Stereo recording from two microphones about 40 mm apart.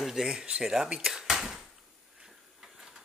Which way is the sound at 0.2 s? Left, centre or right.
Centre.